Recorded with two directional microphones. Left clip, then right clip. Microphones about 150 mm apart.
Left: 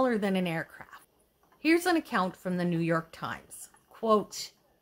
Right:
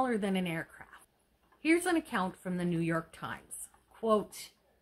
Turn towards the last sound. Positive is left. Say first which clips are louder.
# left 4 dB
turn(degrees=55)  # may be behind; listen again after turning